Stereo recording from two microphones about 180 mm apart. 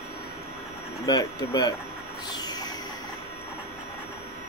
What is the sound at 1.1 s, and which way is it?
Speech, 20° left (ahead or behind).